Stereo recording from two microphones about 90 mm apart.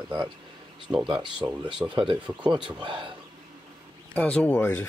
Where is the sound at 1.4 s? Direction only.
55° right (ahead or behind).